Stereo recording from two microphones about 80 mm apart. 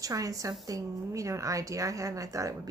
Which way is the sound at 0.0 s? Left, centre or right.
Right.